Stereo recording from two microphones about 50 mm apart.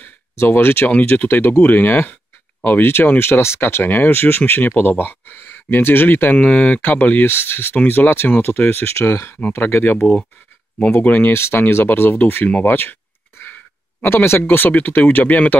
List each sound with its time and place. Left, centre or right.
0.0 s a sound: left
1.1 s speech: left
6.3 s speech: left
7.3 s speech: left
7.7 s speech: left
8.8 s speech: left
9.7 s speech: left
11.0 s speech: left
14.0 s speech: left
14.5 s speech: left